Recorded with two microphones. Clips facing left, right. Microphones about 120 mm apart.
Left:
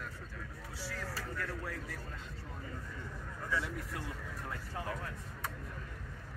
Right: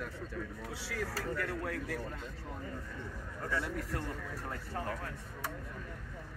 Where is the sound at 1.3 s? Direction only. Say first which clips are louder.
Right 4 dB; 65° right (ahead or behind).